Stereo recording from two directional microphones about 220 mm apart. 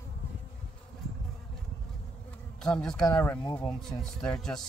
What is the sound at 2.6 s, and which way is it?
A man's voice, 5° left (ahead or behind).